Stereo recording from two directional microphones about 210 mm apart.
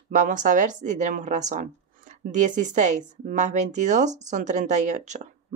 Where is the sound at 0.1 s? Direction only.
35° right (ahead or behind).